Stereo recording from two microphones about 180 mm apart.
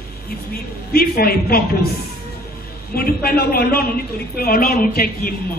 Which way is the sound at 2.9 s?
55° left (ahead or behind).